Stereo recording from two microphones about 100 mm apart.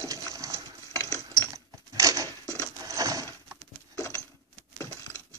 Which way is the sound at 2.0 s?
35° right (ahead or behind).